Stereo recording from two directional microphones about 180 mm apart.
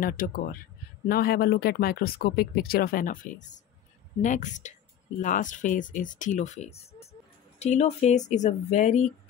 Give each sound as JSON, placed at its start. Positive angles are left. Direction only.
{"t": 0.0, "sound": "speech", "side_deg": 50}